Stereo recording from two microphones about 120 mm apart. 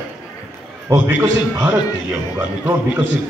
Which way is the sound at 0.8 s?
20° right (ahead or behind).